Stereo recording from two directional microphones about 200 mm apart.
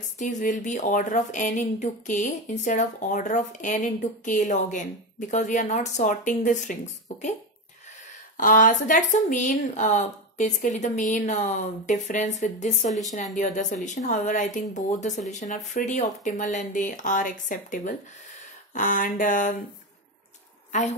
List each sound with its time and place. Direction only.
0.2 s a woman's voice: 40° left (ahead or behind)
8.4 s a woman's voice: 40° left (ahead or behind)